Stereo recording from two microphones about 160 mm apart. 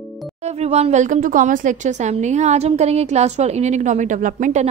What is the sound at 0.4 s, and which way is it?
Speech, 40° right (ahead or behind).